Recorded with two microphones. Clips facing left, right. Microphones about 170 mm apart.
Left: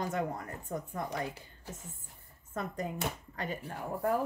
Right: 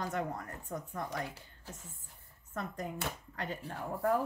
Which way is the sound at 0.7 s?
15° left (ahead or behind).